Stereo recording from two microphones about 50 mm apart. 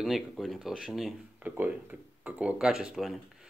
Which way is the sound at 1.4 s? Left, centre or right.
Right.